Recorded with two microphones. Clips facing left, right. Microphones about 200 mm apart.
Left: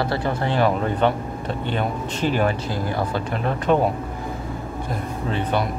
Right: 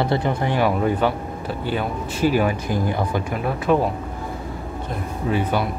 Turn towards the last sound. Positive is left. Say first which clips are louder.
# right 1 dB
turn(degrees=-10)  # may be behind; listen again after turning